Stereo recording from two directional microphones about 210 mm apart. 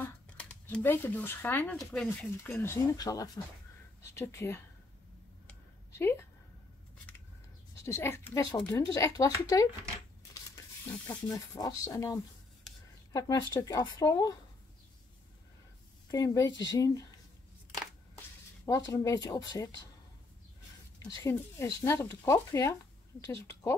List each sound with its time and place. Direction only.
0.0 s speech: 5° left (ahead or behind)
5.9 s speech: 10° left (ahead or behind)
7.8 s speech: 10° left (ahead or behind)
11.1 s speech: 15° left (ahead or behind)
16.1 s speech: 15° left (ahead or behind)
18.9 s speech: 15° left (ahead or behind)
21.1 s speech: 15° left (ahead or behind)